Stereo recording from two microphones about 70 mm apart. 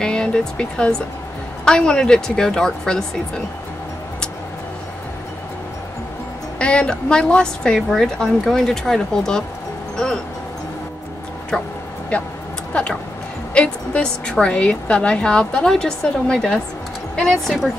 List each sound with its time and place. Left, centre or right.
0.0 s a woman's voice: centre
6.6 s a woman's voice: centre
11.5 s a woman's voice: centre
13.5 s a woman's voice: centre